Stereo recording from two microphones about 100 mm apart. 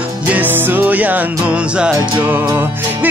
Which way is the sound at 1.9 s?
30° right (ahead or behind).